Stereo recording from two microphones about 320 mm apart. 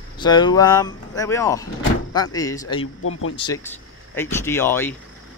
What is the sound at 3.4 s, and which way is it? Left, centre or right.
Speech, centre.